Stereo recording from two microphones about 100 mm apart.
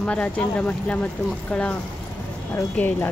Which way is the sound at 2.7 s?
15° left (ahead or behind).